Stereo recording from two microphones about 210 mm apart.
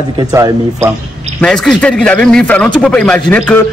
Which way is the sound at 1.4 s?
5° left (ahead or behind).